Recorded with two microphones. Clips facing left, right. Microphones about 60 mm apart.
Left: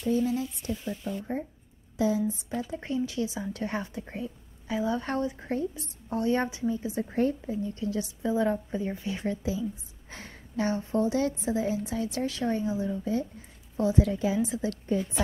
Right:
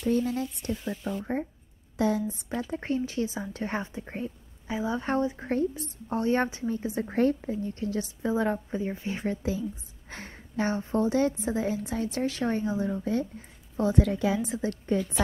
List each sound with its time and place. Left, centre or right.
0.2 s a woman's voice: right
0.7 s a woman's voice: right
2.0 s a woman's voice: right
2.5 s a woman's voice: right
4.1 s a sound: right
4.7 s a woman's voice: right
5.5 s a woman's voice: right
8.6 s a woman's voice: centre
8.9 s a woman's voice: right
14.5 s a woman's voice: right